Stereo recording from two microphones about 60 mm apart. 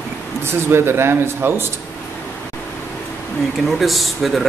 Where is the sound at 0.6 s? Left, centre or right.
Right.